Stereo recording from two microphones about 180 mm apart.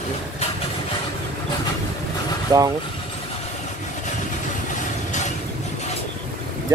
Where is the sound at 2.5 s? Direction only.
20° right (ahead or behind).